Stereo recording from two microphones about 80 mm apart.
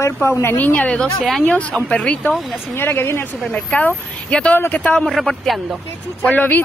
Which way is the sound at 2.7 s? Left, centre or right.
Left.